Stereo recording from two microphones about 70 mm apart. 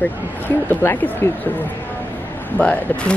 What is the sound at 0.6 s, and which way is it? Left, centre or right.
Speech, left.